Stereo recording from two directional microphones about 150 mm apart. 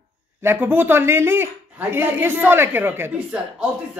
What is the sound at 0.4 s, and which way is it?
A man's voice, 15° right (ahead or behind).